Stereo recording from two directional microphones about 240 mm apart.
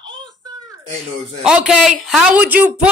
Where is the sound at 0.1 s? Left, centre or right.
Centre.